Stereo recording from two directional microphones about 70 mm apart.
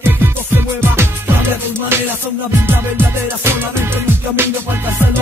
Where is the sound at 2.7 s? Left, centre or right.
Right.